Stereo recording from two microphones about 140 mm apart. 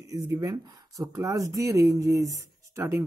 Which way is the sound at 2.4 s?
20° right (ahead or behind).